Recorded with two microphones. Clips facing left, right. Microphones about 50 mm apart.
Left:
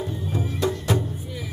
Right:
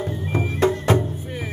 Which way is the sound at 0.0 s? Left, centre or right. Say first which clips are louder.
Right 3 dB; right.